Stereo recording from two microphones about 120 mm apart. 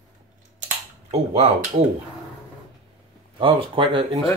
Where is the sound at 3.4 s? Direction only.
45° right (ahead or behind).